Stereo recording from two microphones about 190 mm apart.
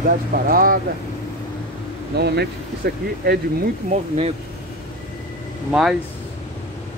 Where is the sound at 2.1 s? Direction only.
60° right (ahead or behind).